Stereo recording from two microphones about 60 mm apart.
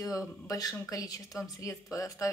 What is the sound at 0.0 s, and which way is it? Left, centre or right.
A woman's voice, left.